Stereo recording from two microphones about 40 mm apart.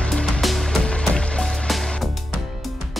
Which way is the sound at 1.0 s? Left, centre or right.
Left.